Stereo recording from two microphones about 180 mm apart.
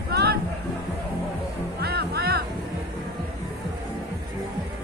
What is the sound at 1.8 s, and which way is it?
Music, 60° right (ahead or behind).